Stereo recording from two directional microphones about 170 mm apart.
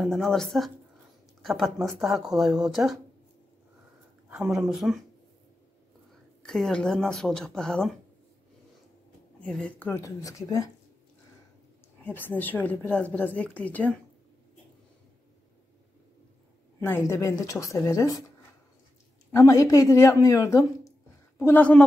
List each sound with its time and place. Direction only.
0.0 s speech: centre (ahead or behind)
4.3 s speech: 5° right (ahead or behind)
6.4 s speech: 5° left (ahead or behind)
9.4 s a woman's voice: 5° left (ahead or behind)
12.0 s a woman's voice: 10° left (ahead or behind)
16.8 s a woman's voice: 15° left (ahead or behind)
19.3 s a woman's voice: 20° left (ahead or behind)